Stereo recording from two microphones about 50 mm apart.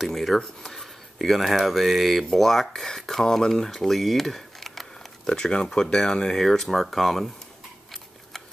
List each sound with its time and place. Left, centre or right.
0.0 s a sound: centre
0.4 s speech: centre
1.2 s speech: centre
5.3 s speech: centre